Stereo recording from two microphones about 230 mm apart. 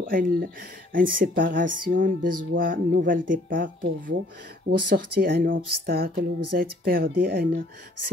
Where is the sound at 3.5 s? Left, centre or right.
Right.